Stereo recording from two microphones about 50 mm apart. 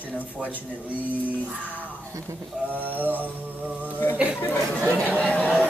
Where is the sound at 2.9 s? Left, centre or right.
Right.